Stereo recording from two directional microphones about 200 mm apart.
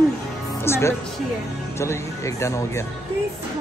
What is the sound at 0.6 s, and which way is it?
A woman's voice, 10° left (ahead or behind).